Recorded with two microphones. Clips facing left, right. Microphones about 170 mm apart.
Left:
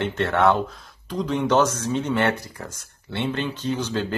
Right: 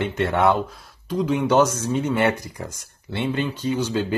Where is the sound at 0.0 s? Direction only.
10° right (ahead or behind).